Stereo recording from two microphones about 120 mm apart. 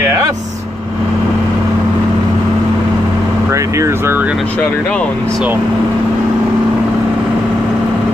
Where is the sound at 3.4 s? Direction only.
25° right (ahead or behind).